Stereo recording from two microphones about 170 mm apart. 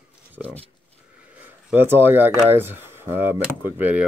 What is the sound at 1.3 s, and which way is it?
Speech, 10° right (ahead or behind).